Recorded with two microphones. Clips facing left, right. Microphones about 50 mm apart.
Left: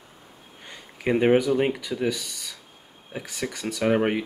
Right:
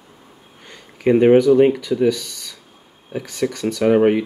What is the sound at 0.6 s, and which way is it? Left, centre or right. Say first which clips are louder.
Sniff: right 9 dB; centre.